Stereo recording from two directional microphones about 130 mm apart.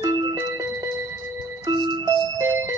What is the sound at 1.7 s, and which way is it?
Music, 35° right (ahead or behind).